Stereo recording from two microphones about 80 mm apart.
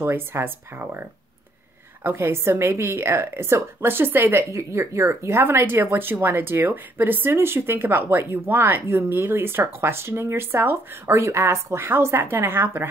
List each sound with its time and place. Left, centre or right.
0.0 s speech: right
2.0 s a woman's voice: right